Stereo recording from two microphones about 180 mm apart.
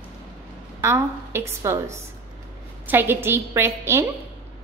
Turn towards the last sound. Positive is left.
turn(degrees=-15)  # may be behind; listen again after turning